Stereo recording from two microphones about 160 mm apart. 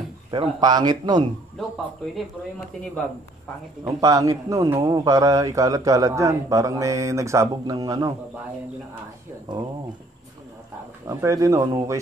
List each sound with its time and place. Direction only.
0.3 s a man's voice: 30° right (ahead or behind)
3.8 s a man's voice: 20° right (ahead or behind)
9.5 s a man's voice: 30° right (ahead or behind)
11.1 s a man's voice: 20° right (ahead or behind)